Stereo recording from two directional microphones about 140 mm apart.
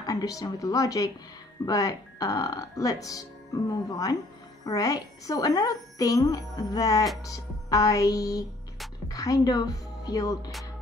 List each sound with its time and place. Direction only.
0.0 s a woman's voice: 25° left (ahead or behind)